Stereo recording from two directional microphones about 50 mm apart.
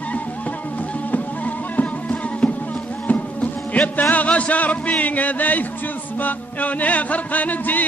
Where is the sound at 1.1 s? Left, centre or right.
Left.